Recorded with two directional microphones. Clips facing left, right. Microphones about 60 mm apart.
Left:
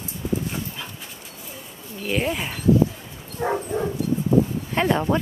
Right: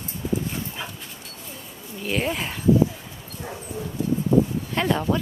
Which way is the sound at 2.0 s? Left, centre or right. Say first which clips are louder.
Left 1 dB; centre.